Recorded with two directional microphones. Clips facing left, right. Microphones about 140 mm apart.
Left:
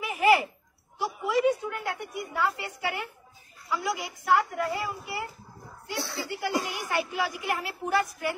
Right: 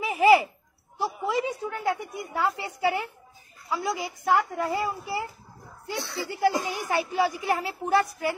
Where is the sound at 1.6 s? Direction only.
35° right (ahead or behind).